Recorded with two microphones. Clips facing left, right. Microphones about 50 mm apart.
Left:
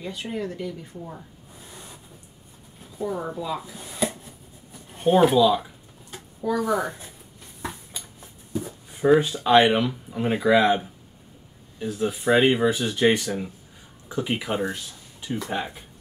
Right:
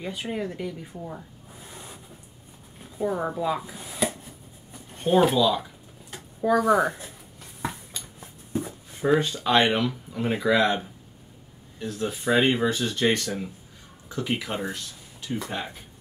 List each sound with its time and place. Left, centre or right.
0.0 s speech: centre
1.0 s a sound: centre
3.1 s speech: right
3.8 s a sound: centre
4.9 s speech: centre
6.5 s speech: right
8.2 s a sound: right
8.9 s speech: centre
11.8 s speech: centre